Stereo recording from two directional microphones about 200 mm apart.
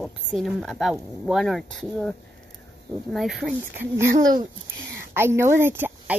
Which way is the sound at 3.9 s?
15° right (ahead or behind).